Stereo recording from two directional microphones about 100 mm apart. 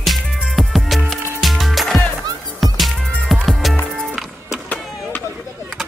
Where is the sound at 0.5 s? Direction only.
Centre (ahead or behind).